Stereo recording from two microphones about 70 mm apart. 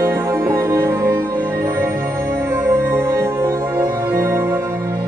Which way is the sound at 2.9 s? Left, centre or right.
Right.